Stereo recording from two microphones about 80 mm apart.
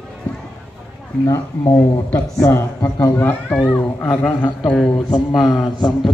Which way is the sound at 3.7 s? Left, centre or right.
Left.